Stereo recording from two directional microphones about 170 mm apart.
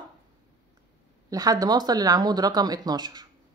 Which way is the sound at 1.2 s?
20° right (ahead or behind).